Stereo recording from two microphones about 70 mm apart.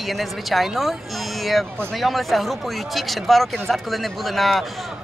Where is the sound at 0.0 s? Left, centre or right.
Centre.